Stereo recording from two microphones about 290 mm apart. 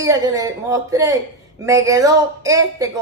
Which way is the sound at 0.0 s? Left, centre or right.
Centre.